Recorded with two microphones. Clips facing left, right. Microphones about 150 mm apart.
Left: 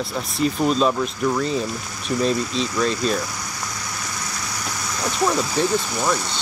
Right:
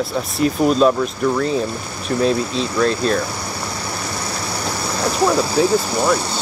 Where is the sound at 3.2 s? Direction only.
30° right (ahead or behind).